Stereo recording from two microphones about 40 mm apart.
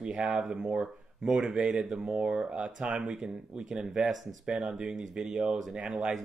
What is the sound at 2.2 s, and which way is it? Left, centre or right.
Speech, right.